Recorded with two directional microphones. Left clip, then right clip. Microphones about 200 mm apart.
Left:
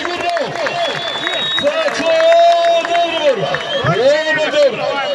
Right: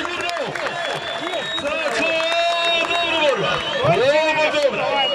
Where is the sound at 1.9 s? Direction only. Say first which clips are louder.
Left 9 dB; 30° left (ahead or behind).